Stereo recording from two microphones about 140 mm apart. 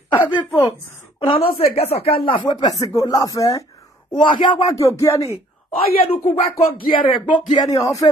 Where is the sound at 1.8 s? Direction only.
45° left (ahead or behind).